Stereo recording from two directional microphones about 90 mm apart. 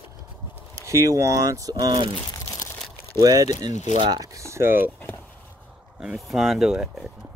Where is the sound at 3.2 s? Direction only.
45° right (ahead or behind).